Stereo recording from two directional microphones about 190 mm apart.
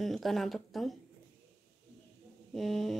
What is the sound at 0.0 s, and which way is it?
Speech, centre (ahead or behind).